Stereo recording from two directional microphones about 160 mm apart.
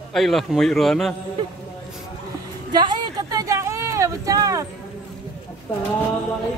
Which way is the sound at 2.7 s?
25° right (ahead or behind).